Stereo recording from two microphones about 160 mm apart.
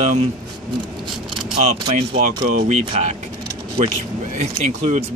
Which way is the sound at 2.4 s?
60° right (ahead or behind).